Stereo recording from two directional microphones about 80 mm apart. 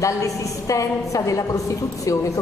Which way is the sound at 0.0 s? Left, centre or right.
Left.